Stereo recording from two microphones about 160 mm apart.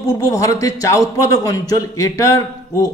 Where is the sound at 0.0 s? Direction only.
20° left (ahead or behind).